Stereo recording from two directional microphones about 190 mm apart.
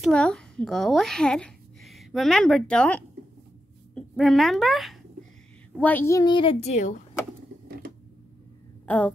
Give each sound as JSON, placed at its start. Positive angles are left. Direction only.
{"t": 0.0, "sound": "a woman's voice", "side_deg": 5}
{"t": 8.8, "sound": "speech", "side_deg": 10}